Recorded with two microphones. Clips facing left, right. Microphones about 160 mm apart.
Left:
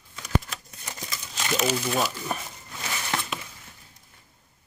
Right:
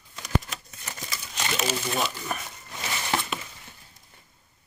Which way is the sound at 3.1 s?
15° right (ahead or behind).